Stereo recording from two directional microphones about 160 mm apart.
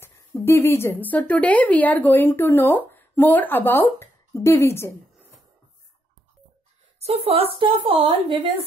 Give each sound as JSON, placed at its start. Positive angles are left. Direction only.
{"t": 0.0, "sound": "speech", "side_deg": 15}
{"t": 7.0, "sound": "a woman's voice", "side_deg": -40}